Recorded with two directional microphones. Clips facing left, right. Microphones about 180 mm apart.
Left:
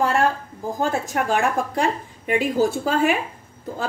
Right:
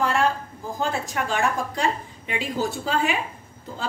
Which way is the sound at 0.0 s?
35° left (ahead or behind).